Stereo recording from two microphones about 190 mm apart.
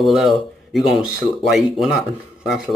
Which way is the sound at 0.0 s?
Centre (ahead or behind).